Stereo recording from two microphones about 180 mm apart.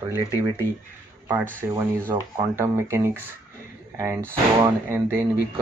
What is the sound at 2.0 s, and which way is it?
Speech, 15° right (ahead or behind).